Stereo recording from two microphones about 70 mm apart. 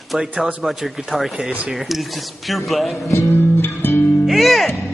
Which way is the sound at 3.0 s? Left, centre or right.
Left.